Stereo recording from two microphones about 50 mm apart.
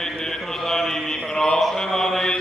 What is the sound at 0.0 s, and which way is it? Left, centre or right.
Mantra, centre.